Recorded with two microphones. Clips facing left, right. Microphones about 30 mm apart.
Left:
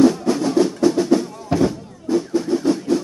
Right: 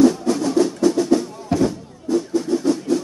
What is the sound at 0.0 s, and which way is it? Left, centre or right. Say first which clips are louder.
Music: even; centre.